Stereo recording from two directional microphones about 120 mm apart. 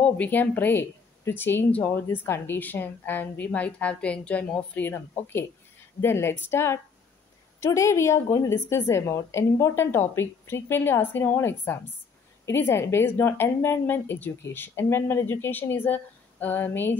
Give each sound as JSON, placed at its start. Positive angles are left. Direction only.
{"t": 0.2, "sound": "speech", "side_deg": 15}